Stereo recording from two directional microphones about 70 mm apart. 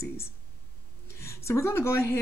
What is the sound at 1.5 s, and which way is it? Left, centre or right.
Speech, left.